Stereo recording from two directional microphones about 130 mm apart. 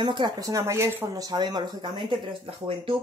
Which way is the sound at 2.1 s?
45° right (ahead or behind).